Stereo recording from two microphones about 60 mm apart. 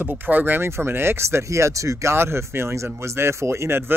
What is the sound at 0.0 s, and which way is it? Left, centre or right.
Speech, right.